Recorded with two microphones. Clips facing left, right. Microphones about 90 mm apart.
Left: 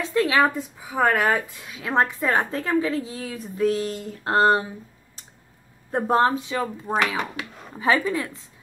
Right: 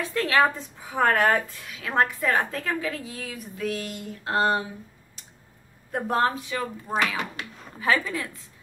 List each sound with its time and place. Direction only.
0.0 s a woman's voice: 20° left (ahead or behind)
1.5 s a woman's voice: 20° left (ahead or behind); by 4.6 s 35° left (ahead or behind)
5.9 s a woman's voice: 30° left (ahead or behind)